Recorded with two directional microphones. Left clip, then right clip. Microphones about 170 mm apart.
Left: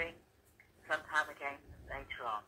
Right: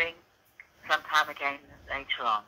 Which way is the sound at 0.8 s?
35° right (ahead or behind).